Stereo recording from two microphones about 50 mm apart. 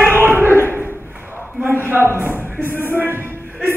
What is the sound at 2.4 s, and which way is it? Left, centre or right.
Music, right.